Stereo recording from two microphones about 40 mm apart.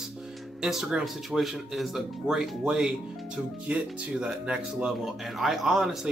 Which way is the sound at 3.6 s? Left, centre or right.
Right.